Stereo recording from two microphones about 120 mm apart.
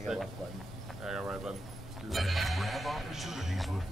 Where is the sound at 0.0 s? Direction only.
Centre (ahead or behind).